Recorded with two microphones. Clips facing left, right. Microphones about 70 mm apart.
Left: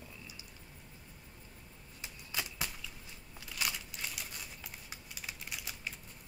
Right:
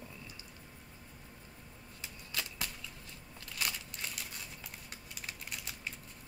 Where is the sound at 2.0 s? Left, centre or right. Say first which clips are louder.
Left 1 dB; centre.